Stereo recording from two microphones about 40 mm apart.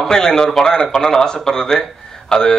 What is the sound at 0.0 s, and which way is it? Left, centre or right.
Speech, centre.